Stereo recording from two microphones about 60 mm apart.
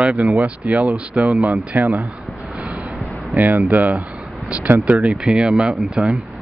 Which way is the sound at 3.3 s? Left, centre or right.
Right.